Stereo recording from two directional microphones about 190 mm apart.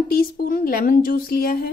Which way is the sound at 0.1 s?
50° left (ahead or behind).